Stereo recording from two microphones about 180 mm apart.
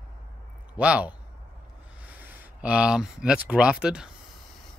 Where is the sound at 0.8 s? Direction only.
5° right (ahead or behind).